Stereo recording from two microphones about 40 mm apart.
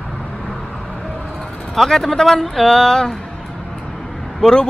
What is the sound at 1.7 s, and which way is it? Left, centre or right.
Speech, centre.